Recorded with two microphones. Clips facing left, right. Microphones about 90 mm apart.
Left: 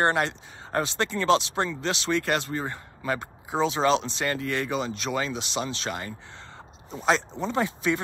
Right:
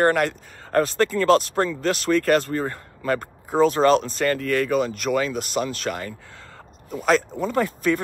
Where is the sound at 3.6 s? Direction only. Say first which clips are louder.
Right 6 dB; 50° right (ahead or behind).